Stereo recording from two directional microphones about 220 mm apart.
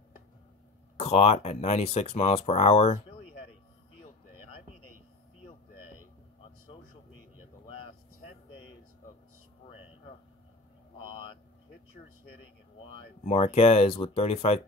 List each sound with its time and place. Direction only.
0.9 s speech: 30° left (ahead or behind)
7.6 s a sound: 20° left (ahead or behind)
12.8 s speech: 25° left (ahead or behind)